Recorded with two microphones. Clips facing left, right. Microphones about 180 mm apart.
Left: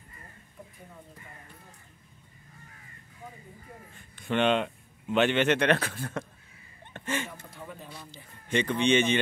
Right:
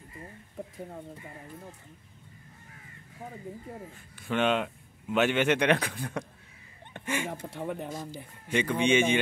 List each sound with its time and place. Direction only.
0.6 s bird: 80° right
4.2 s speech: 5° right (ahead or behind)
6.9 s a sound: 10° right (ahead or behind)
7.2 s speech: 70° right (ahead or behind)
8.5 s speech: 10° right (ahead or behind)